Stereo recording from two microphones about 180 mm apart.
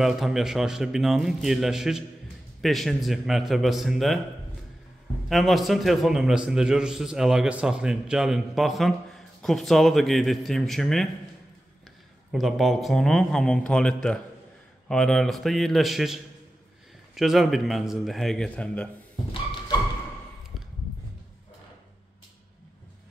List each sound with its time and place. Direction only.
0.0 s a man's voice: centre (ahead or behind)
5.3 s a man's voice: centre (ahead or behind)
12.3 s a man's voice: centre (ahead or behind)